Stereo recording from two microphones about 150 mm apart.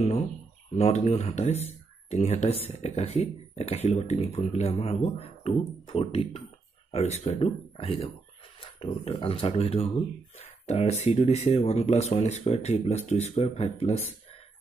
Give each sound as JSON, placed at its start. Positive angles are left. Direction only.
{"t": 0.7, "sound": "speech", "side_deg": 45}